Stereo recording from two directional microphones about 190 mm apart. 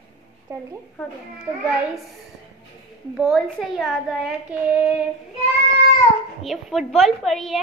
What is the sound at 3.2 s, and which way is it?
A woman's voice, centre (ahead or behind).